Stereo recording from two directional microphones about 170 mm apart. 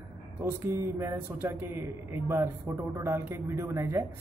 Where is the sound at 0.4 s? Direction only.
15° right (ahead or behind).